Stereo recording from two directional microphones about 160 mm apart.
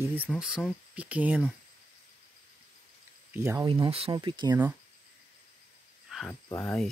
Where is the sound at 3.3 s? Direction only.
15° right (ahead or behind).